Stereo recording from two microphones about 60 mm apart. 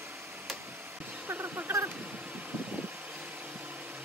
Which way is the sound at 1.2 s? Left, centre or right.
Right.